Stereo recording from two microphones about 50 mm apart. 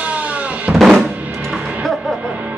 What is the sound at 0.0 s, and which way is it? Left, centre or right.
Drum, right.